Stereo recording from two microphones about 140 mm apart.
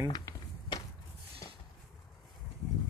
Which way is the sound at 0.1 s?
25° left (ahead or behind).